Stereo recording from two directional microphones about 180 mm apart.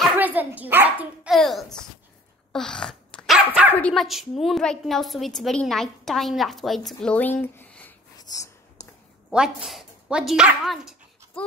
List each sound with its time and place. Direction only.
0.0 s a child's voice: 10° right (ahead or behind)
2.5 s dog: 5° left (ahead or behind)
3.7 s a woman's voice: 5° left (ahead or behind)
8.2 s whispering: 20° left (ahead or behind)
9.3 s speech: 5° right (ahead or behind)